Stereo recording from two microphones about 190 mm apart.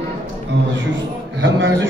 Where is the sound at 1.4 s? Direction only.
70° right (ahead or behind).